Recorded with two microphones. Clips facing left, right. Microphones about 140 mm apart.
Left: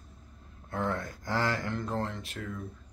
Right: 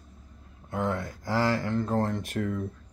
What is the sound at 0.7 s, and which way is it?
Speech, 20° right (ahead or behind).